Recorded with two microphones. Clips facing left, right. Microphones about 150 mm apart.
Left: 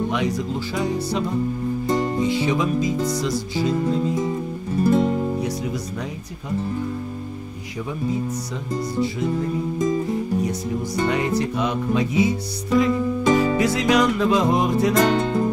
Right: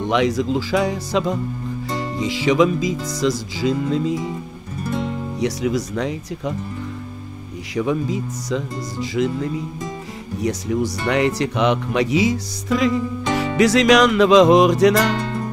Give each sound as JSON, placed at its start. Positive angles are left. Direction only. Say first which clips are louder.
{"t": 0.1, "sound": "music", "louder": "right 5 dB", "side_deg": -90}
{"t": 5.4, "sound": "music", "louder": "right 5 dB", "side_deg": -85}
{"t": 7.7, "sound": "music", "louder": "right 5 dB", "side_deg": -90}